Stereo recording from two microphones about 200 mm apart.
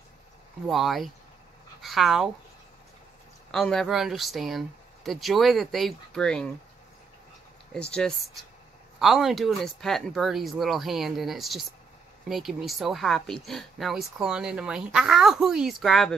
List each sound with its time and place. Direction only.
0.7 s speech: centre (ahead or behind)
3.5 s speech: centre (ahead or behind)
7.7 s speech: 5° left (ahead or behind)